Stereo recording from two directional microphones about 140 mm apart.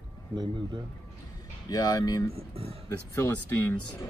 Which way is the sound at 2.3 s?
45° right (ahead or behind).